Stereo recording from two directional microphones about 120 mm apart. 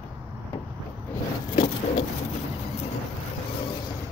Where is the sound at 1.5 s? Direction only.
50° left (ahead or behind).